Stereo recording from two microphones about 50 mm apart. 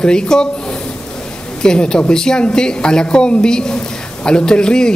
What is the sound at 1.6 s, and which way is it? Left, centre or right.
Speech, centre.